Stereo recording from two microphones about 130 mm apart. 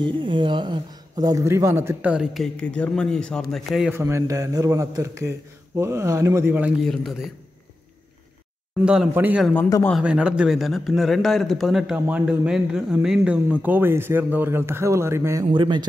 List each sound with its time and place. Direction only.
0.0 s speech: 40° right (ahead or behind); by 2.5 s 5° right (ahead or behind)
2.6 s speech: 10° left (ahead or behind)
3.9 s speech: 20° right (ahead or behind)
6.8 s a man's voice: centre (ahead or behind)
8.8 s a man's voice: 5° right (ahead or behind)
15.5 s a man's voice: 35° right (ahead or behind)